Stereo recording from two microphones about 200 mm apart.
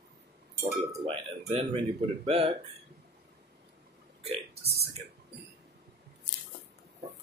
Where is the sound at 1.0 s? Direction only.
35° right (ahead or behind).